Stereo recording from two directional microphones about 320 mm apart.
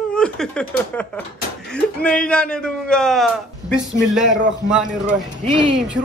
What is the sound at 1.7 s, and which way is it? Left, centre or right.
Speech, centre.